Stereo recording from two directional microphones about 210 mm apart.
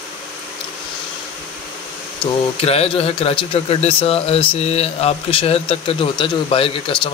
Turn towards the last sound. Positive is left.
turn(degrees=25)  # may be behind; listen again after turning